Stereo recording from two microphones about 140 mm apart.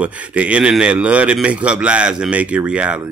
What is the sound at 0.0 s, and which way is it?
Speech, 10° right (ahead or behind).